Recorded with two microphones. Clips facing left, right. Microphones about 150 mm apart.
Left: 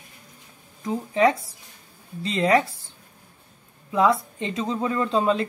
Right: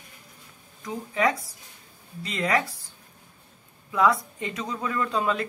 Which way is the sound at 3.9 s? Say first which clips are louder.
Left 2 dB; 25° left (ahead or behind).